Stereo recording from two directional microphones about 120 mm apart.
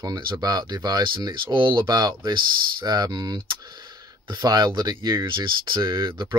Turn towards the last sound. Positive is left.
turn(degrees=-40)  # may be behind; listen again after turning